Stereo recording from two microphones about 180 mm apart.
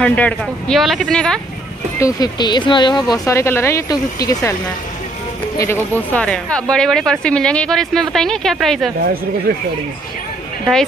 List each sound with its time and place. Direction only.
0.0 s speech: 5° left (ahead or behind)
2.0 s speech: 20° left (ahead or behind)
5.6 s speech: 10° left (ahead or behind)